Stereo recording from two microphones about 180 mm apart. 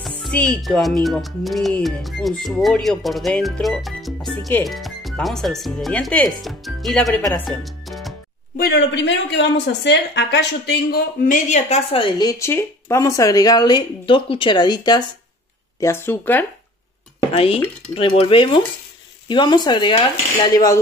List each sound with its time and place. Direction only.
0.0 s speech: 5° left (ahead or behind)
7.4 s music: centre (ahead or behind)
8.5 s a woman's voice: 65° left (ahead or behind); by 15.0 s 25° left (ahead or behind)
15.8 s speech: 10° left (ahead or behind)
17.3 s a woman's voice: 30° left (ahead or behind)